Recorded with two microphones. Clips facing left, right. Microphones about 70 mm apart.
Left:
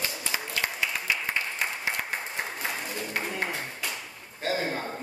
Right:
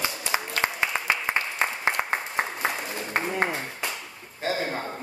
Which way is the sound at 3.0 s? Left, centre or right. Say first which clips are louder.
Right 6 dB; right.